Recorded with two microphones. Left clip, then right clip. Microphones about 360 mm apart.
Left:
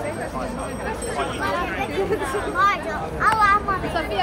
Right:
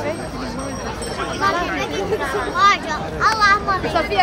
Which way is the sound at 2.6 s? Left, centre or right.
Centre.